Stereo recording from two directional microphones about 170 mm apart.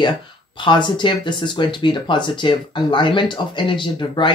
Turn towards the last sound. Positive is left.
turn(degrees=30)  # may be behind; listen again after turning